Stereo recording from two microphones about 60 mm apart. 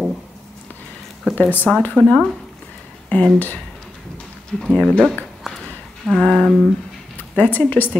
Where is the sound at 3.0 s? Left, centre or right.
Left.